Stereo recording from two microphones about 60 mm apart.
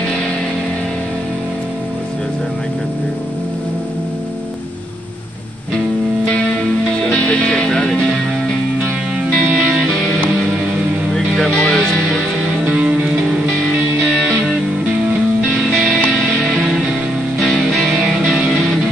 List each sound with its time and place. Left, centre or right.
7.0 s music: centre
11.1 s music: centre
12.6 s music: centre
16.5 s music: centre
17.4 s music: centre